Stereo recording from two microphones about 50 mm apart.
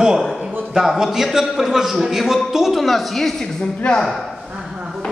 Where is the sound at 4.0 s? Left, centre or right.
Centre.